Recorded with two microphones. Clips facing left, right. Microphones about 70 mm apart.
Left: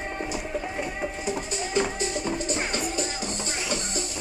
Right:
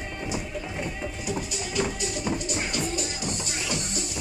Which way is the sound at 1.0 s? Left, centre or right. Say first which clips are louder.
Left 2 dB; left.